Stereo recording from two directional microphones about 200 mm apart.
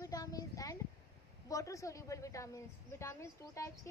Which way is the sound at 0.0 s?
15° left (ahead or behind).